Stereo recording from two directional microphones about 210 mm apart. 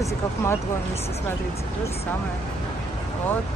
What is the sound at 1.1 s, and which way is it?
Speech, 30° left (ahead or behind).